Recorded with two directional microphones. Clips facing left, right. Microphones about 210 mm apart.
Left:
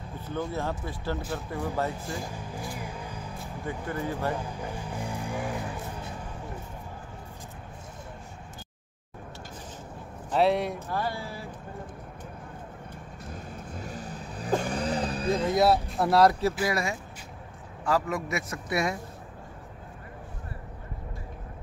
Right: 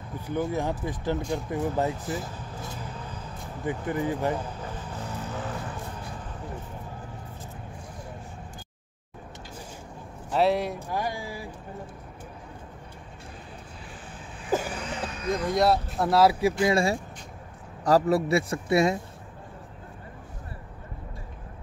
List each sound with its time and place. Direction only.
0.2 s speech: 15° right (ahead or behind)
2.3 s speech: 10° left (ahead or behind)
2.8 s vehicle: 10° left (ahead or behind)
3.6 s speech: 20° right (ahead or behind)
4.6 s vehicle: 10° left (ahead or behind)
10.3 s speech: centre (ahead or behind)
10.9 s speech: 15° right (ahead or behind)
13.3 s vehicle: 45° left (ahead or behind)
15.5 s speech: centre (ahead or behind)
16.6 s a man's voice: 30° right (ahead or behind)